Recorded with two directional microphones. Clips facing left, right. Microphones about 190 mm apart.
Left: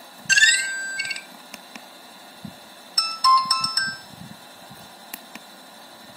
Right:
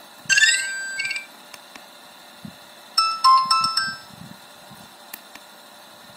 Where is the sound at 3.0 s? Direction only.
30° left (ahead or behind).